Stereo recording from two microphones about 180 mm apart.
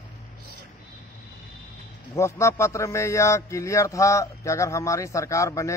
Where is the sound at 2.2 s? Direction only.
15° left (ahead or behind).